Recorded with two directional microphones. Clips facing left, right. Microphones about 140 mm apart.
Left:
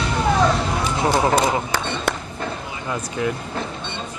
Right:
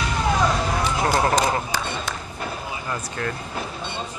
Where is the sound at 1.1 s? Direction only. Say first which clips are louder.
Left 3 dB; 15° left (ahead or behind).